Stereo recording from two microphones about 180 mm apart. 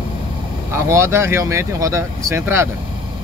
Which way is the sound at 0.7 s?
15° right (ahead or behind).